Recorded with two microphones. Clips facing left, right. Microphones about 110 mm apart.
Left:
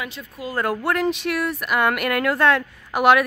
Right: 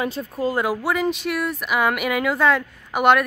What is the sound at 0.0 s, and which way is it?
Speech, 35° right (ahead or behind).